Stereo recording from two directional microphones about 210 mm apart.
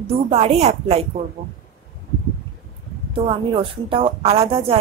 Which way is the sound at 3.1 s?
25° right (ahead or behind).